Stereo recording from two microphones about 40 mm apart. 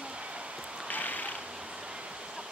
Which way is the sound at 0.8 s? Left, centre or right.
Left.